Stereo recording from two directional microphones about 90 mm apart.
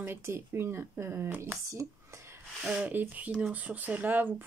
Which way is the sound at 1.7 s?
35° right (ahead or behind).